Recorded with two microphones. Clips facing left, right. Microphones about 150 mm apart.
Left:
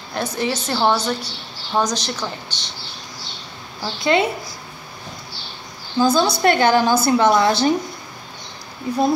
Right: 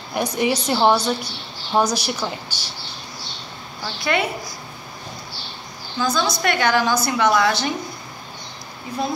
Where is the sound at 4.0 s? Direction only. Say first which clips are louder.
Left 4 dB; 25° left (ahead or behind).